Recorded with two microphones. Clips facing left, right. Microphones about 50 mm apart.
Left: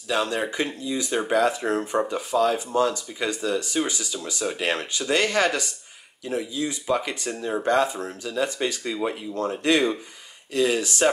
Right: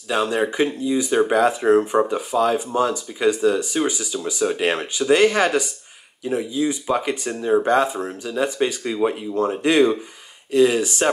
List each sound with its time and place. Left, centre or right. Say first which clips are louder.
0.1 s speech: right 4 dB; centre